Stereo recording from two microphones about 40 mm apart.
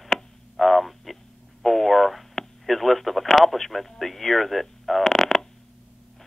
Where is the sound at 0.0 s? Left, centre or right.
Centre.